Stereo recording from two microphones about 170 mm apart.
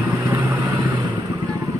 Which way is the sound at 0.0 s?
10° right (ahead or behind).